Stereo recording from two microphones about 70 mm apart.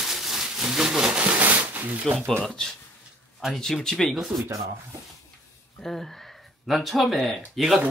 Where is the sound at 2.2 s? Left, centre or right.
Centre.